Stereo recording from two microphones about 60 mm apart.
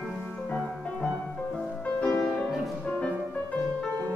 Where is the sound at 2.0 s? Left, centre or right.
Centre.